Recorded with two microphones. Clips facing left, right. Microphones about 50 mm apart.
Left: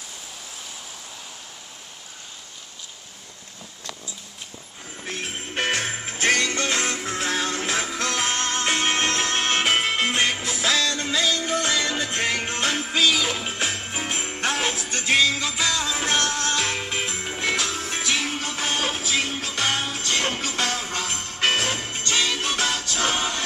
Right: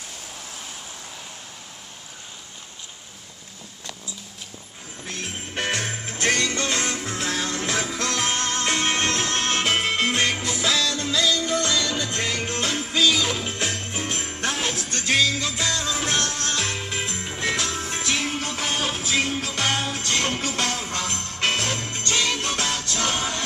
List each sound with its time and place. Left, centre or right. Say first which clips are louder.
5.0 s music: left 2 dB; centre
10.9 s music: right 1 dB; left
20.9 s jingle bell: even; left
22.3 s music: left 1 dB; centre